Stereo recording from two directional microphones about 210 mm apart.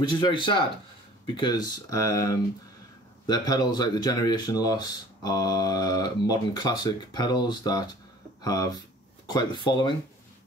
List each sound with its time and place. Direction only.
0.1 s speech: 25° left (ahead or behind)